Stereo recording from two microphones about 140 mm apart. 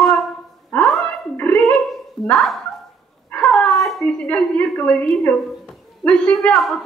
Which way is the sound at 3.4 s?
Centre (ahead or behind).